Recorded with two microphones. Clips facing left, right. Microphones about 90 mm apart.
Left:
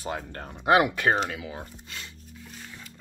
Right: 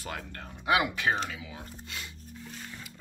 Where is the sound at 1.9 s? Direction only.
Centre (ahead or behind).